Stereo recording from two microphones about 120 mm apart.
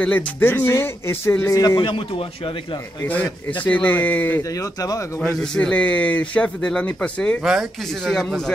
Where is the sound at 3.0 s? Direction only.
10° left (ahead or behind).